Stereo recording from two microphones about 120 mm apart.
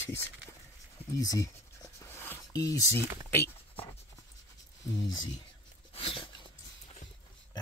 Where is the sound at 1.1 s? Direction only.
30° left (ahead or behind).